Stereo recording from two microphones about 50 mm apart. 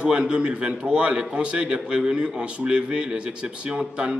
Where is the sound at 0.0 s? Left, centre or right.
Right.